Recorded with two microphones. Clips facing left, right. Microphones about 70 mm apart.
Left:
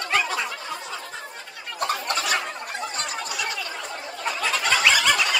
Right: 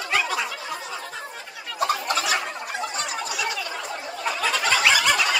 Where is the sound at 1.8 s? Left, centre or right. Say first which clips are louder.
Right 2 dB; centre.